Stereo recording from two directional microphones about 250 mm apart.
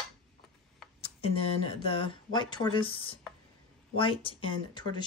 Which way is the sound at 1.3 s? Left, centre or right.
Left.